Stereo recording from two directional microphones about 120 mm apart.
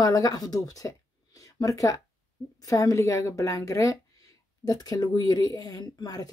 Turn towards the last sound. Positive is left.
turn(degrees=35)  # may be behind; listen again after turning